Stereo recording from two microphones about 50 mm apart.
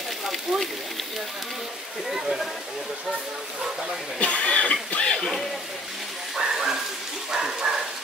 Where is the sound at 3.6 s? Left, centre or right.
Centre.